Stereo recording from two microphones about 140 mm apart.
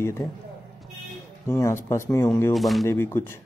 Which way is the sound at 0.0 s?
20° left (ahead or behind).